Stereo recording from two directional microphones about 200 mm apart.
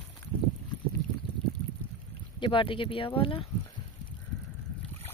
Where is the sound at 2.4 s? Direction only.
25° left (ahead or behind).